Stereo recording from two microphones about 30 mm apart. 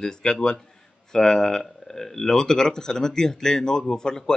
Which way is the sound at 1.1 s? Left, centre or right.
Centre.